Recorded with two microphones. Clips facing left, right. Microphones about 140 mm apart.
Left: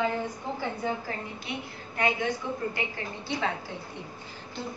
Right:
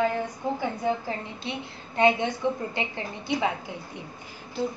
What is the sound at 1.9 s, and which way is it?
A woman's voice, 25° right (ahead or behind).